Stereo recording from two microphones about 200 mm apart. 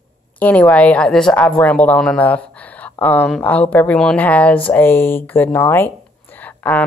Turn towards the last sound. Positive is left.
turn(degrees=10)  # may be behind; listen again after turning